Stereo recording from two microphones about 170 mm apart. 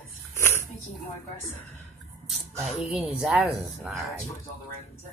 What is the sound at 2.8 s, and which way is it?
Speech, 5° right (ahead or behind).